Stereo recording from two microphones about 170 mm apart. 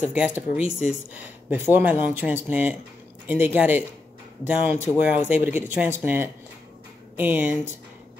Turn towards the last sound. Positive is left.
turn(degrees=-10)  # may be behind; listen again after turning